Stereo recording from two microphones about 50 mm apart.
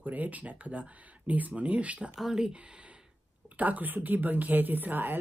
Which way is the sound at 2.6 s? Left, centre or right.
Right.